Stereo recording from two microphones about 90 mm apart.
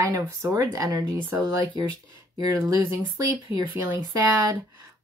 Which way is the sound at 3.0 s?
45° right (ahead or behind).